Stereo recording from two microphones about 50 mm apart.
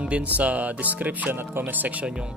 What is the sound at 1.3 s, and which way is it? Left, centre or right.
Speech, right.